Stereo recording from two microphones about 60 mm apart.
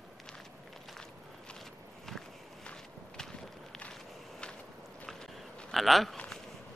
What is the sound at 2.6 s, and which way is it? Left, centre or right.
Walk, centre.